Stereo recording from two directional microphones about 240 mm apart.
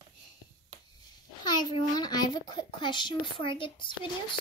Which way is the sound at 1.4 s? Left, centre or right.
Centre.